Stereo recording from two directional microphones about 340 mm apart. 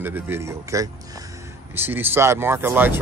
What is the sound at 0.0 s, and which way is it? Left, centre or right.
Speech, centre.